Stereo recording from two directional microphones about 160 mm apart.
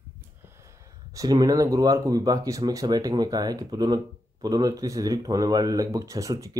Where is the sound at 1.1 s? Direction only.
20° right (ahead or behind).